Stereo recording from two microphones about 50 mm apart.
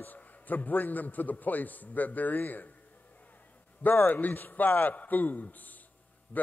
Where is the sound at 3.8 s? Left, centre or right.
Left.